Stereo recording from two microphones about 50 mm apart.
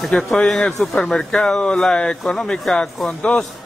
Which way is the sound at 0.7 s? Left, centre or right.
Centre.